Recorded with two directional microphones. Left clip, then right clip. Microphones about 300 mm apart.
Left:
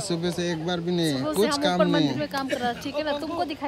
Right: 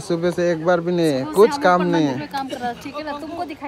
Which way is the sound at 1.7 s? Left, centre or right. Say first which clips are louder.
Right 5 dB; centre.